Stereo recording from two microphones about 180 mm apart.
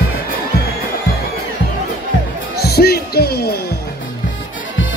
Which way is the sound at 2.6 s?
60° left (ahead or behind).